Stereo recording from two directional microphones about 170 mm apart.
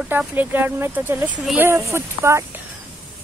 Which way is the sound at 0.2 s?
10° right (ahead or behind).